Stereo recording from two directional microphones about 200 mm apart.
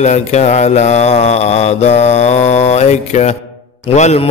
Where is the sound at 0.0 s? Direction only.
35° left (ahead or behind).